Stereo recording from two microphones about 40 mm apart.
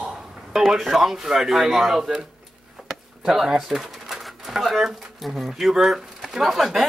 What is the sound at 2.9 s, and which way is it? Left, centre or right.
Pigeon, centre.